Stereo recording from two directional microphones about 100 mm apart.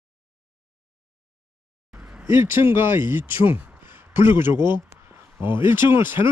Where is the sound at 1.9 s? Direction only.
10° right (ahead or behind).